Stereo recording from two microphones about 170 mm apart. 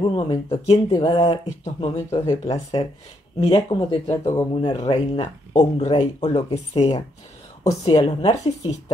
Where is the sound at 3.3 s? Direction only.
35° left (ahead or behind).